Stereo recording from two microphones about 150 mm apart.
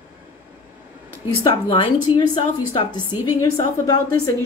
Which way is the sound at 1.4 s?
35° left (ahead or behind).